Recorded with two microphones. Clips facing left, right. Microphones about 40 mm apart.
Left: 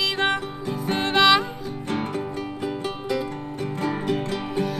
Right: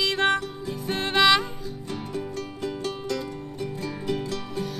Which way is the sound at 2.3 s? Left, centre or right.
Centre.